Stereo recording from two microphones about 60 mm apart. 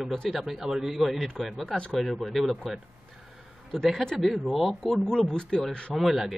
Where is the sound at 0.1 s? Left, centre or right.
Centre.